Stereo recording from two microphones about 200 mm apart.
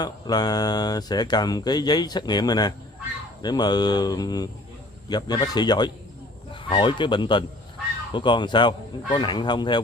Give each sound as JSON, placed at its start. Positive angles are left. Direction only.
{"t": 0.0, "sound": "speech", "side_deg": 20}